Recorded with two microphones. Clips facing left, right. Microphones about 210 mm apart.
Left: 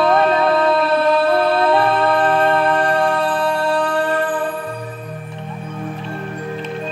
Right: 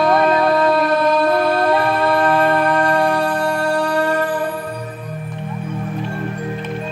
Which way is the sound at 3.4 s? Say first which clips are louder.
Even; 45° right (ahead or behind).